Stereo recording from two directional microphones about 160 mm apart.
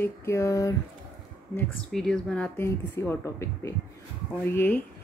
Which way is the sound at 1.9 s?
5° left (ahead or behind).